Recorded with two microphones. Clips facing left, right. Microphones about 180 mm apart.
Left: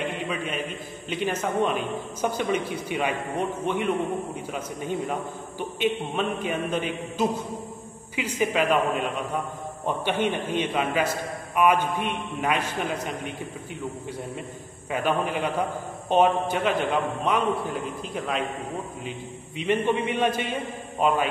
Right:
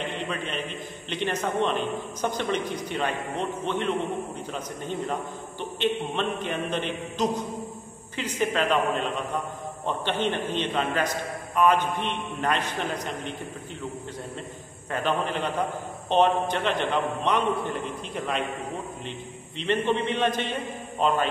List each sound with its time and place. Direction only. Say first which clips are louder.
0.0 s a sound: left 2 dB; 10° left (ahead or behind)
1.1 s a man's voice: left 1 dB; 5° left (ahead or behind)
14.9 s a man's voice: left 2 dB; 10° left (ahead or behind)